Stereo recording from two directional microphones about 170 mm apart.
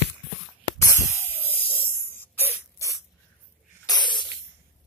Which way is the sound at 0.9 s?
15° left (ahead or behind).